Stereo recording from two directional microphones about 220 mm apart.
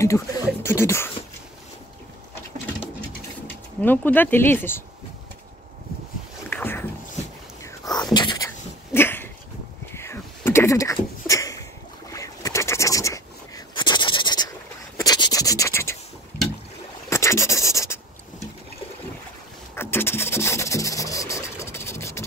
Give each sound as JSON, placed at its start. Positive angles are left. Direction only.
{"t": 0.0, "sound": "speech", "side_deg": 10}
{"t": 3.8, "sound": "speech", "side_deg": 10}
{"t": 6.5, "sound": "a sound", "side_deg": 10}
{"t": 7.9, "sound": "whispering", "side_deg": 20}
{"t": 8.9, "sound": "dog", "side_deg": 10}
{"t": 9.9, "sound": "a sound", "side_deg": 10}
{"t": 15.0, "sound": "scratch", "side_deg": 20}
{"t": 17.1, "sound": "scratch", "side_deg": 15}
{"t": 19.7, "sound": "a sound", "side_deg": 10}